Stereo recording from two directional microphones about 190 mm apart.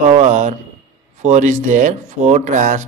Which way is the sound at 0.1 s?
40° right (ahead or behind).